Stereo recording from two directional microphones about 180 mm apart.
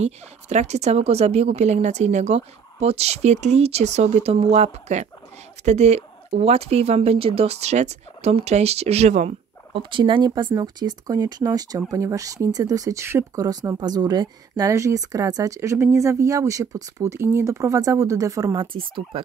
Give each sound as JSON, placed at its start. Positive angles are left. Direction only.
{"t": 0.0, "sound": "a woman's voice", "side_deg": -40}
{"t": 9.8, "sound": "speech", "side_deg": -25}